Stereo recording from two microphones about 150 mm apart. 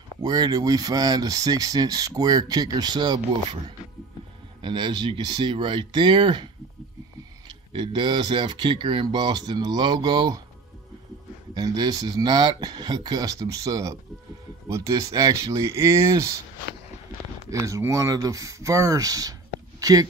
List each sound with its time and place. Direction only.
0.2 s speech: 25° right (ahead or behind)
4.6 s speech: 30° right (ahead or behind)
11.5 s speech: 25° right (ahead or behind)
17.5 s speech: 20° right (ahead or behind)